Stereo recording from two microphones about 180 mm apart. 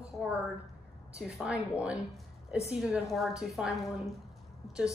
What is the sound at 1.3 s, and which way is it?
A woman's voice, 5° right (ahead or behind).